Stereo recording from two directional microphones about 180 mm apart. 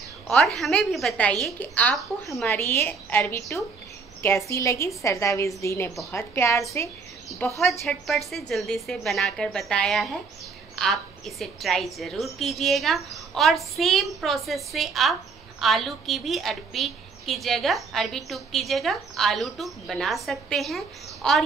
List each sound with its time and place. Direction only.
0.3 s a woman's voice: centre (ahead or behind)
7.8 s a woman's voice: centre (ahead or behind)